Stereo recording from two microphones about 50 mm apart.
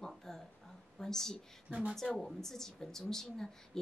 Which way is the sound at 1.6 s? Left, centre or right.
Right.